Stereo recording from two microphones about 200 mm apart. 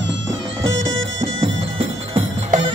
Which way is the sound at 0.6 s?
75° right (ahead or behind).